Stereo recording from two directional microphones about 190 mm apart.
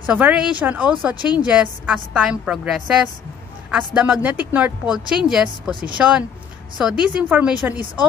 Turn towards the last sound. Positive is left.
turn(degrees=-10)  # may be behind; listen again after turning